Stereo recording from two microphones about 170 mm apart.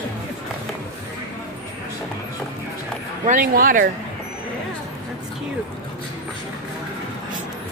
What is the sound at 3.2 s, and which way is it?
Speech, 55° right (ahead or behind).